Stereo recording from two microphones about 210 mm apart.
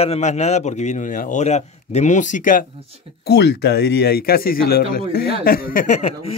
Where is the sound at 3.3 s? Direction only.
55° left (ahead or behind).